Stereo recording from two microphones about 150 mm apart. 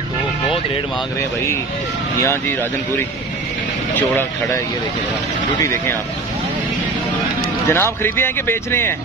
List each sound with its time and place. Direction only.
5.6 s speech: 15° left (ahead or behind)
7.6 s speech: 15° left (ahead or behind)